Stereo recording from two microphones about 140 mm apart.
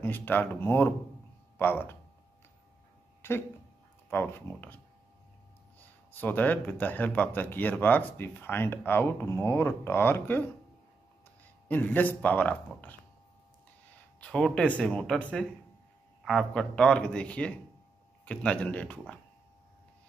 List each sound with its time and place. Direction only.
0.0 s speech: 15° left (ahead or behind)
3.2 s a sound: 15° left (ahead or behind)
4.1 s speech: 15° left (ahead or behind)
6.2 s speech: 10° left (ahead or behind)
11.6 s speech: 10° left (ahead or behind)
14.2 s speech: 5° left (ahead or behind)